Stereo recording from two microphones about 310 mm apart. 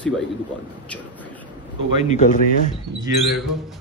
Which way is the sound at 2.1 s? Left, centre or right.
Left.